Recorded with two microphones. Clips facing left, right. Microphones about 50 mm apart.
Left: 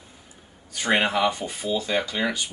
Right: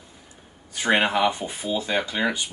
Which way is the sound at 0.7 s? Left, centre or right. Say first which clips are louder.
Right 1 dB; centre.